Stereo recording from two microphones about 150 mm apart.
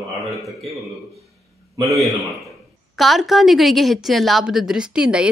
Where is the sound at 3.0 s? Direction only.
Centre (ahead or behind).